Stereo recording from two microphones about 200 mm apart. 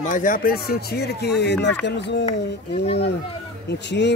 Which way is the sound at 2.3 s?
30° left (ahead or behind).